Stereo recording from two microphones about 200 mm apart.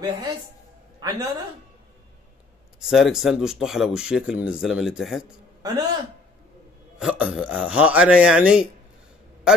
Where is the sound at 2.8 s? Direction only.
Centre (ahead or behind).